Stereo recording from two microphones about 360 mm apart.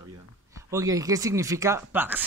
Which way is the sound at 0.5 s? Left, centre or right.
Centre.